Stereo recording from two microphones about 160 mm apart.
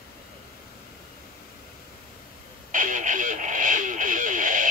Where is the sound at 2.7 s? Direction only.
55° right (ahead or behind).